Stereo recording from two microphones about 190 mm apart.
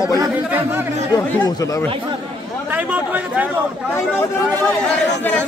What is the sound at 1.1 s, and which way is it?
Speech, 15° left (ahead or behind).